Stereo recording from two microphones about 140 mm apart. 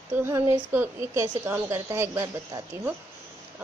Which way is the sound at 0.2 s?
15° right (ahead or behind).